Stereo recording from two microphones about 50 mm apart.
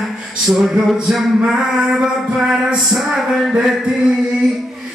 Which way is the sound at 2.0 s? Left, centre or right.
Centre.